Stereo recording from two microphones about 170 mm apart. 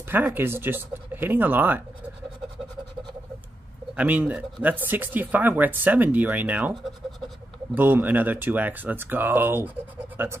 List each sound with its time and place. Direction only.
0.1 s speech: 10° right (ahead or behind)
3.9 s speech: 10° right (ahead or behind)
10.1 s a sound: 15° right (ahead or behind)